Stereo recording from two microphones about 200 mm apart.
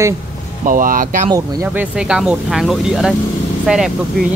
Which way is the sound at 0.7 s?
45° right (ahead or behind).